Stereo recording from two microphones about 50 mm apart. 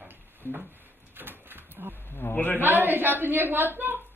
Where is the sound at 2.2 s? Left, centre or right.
Left.